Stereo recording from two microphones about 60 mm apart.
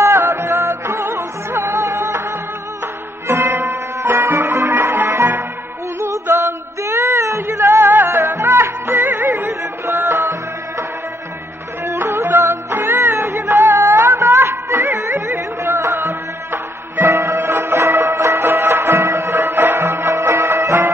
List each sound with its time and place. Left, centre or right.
0.0 s music: right
3.3 s music: right
4.5 s music: right
5.9 s music: right
11.8 s music: right
18.4 s music: right
19.3 s music: right